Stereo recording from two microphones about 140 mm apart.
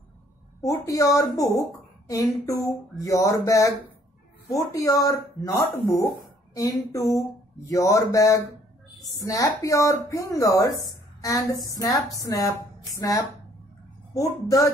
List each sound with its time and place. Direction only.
0.6 s a woman's voice: 25° left (ahead or behind)